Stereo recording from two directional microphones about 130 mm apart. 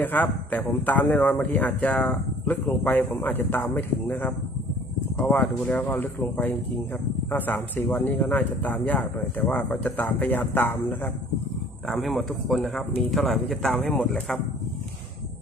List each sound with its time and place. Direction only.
0.0 s speech: 15° left (ahead or behind)
11.9 s speech: centre (ahead or behind)